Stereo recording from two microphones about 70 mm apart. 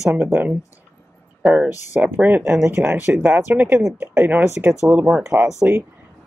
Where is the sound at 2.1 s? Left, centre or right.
Right.